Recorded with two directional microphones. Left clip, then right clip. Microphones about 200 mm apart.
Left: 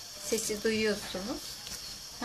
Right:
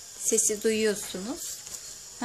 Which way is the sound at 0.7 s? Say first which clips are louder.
Right 3 dB; 50° right (ahead or behind).